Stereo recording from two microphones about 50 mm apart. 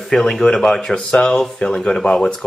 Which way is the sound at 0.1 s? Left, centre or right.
Centre.